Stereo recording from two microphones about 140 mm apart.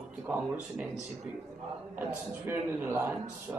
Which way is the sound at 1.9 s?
15° right (ahead or behind).